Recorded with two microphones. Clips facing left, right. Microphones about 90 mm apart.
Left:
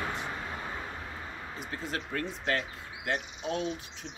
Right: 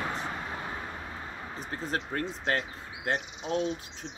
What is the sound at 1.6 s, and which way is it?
A man's voice, 35° right (ahead or behind).